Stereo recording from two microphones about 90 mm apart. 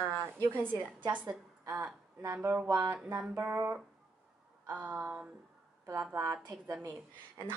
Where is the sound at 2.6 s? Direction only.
40° right (ahead or behind).